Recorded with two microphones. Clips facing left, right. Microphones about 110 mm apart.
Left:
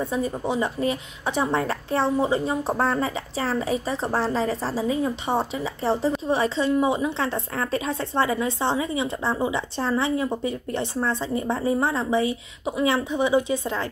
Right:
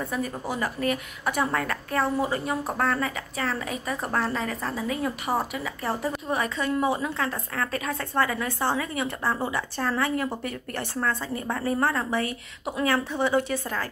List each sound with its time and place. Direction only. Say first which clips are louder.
0.1 s a woman's voice: left 5 dB; 25° left (ahead or behind)